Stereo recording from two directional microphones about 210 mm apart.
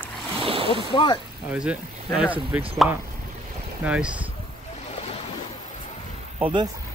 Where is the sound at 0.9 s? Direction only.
20° left (ahead or behind).